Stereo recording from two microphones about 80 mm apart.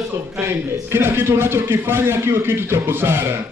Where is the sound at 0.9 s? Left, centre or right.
Right.